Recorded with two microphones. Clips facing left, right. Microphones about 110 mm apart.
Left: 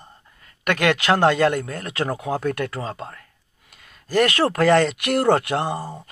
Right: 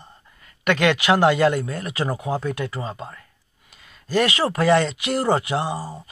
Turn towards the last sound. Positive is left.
turn(degrees=55)  # may be behind; listen again after turning